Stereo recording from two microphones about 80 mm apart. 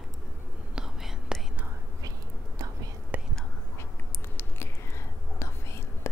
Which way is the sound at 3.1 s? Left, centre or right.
Right.